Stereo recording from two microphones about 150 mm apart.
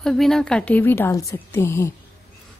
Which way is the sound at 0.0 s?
Centre (ahead or behind).